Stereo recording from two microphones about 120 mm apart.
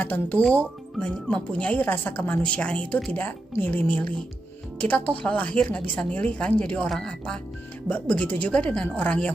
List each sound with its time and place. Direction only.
0.0 s speech: 15° left (ahead or behind)